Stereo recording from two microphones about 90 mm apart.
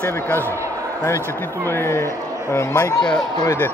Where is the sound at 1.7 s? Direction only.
25° left (ahead or behind).